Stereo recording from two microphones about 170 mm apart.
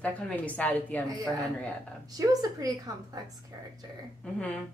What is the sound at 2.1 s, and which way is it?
A woman's voice, 20° right (ahead or behind).